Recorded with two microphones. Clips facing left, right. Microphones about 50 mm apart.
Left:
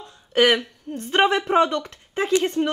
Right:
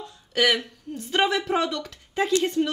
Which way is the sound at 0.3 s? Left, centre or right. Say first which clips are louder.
Left 4 dB; left.